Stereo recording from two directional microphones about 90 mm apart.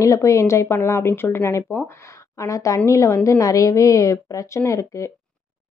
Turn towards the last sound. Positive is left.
turn(degrees=35)  # may be behind; listen again after turning